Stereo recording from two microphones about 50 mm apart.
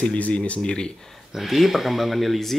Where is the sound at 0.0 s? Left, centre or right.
Left.